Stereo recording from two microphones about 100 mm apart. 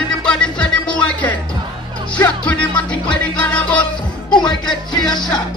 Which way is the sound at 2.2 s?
15° left (ahead or behind).